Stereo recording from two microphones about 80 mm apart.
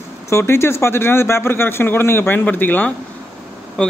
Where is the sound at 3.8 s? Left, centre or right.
Centre.